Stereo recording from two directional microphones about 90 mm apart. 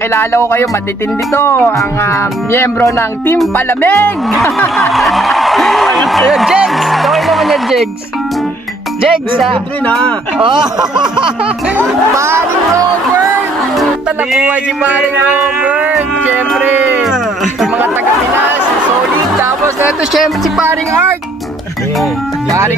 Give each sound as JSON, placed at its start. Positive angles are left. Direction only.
{"t": 0.1, "sound": "speech", "side_deg": 30}
{"t": 4.4, "sound": "snicker", "side_deg": 35}
{"t": 4.9, "sound": "a man's voice", "side_deg": 0}
{"t": 11.8, "sound": "speech", "side_deg": -30}
{"t": 14.0, "sound": "music", "side_deg": -15}
{"t": 17.0, "sound": "music", "side_deg": 0}
{"t": 20.1, "sound": "speech", "side_deg": -5}
{"t": 20.6, "sound": "speech", "side_deg": -30}